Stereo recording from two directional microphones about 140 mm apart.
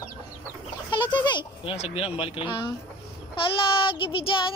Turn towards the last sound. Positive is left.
turn(degrees=40)  # may be behind; listen again after turning